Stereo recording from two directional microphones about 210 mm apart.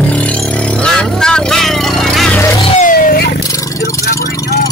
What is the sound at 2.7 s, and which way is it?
Vehicle, 40° left (ahead or behind).